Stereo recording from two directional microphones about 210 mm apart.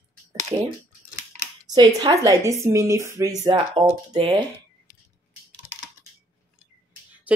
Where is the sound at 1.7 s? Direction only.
20° right (ahead or behind).